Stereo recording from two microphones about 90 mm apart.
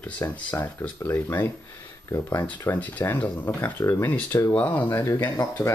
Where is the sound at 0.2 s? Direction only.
30° left (ahead or behind).